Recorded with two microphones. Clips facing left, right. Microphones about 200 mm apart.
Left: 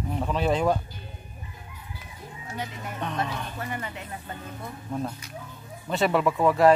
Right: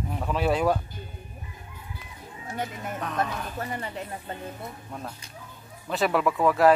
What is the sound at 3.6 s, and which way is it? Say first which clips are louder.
Speech: right 1 dB; 35° right (ahead or behind).